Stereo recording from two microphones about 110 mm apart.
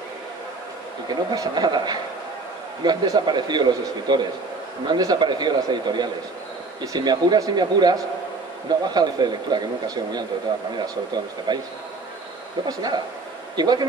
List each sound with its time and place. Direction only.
1.3 s speech: 35° right (ahead or behind)
12.6 s speech: 35° right (ahead or behind)